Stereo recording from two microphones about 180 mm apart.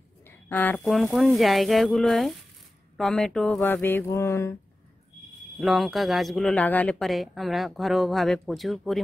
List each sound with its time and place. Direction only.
0.3 s speech: 10° left (ahead or behind)
3.0 s a sound: 5° left (ahead or behind)
5.6 s speech: centre (ahead or behind)